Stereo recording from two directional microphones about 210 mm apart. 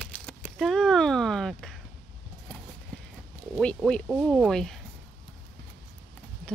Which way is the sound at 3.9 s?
Centre (ahead or behind).